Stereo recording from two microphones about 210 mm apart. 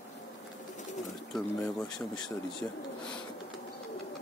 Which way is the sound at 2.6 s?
15° left (ahead or behind).